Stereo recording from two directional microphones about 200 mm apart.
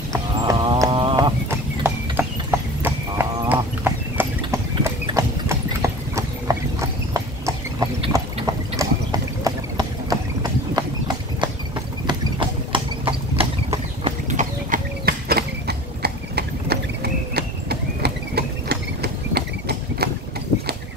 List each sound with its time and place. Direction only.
0.1 s horse: 20° right (ahead or behind)
2.8 s livestock: 10° right (ahead or behind)
8.1 s a sound: 15° right (ahead or behind)
9.4 s clip-clop: 20° right (ahead or behind)
12.1 s clip-clop: 25° right (ahead or behind)
15.0 s clip-clop: 50° right (ahead or behind)